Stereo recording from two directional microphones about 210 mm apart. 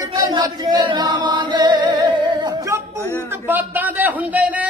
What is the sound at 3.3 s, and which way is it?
A man's voice, 10° right (ahead or behind).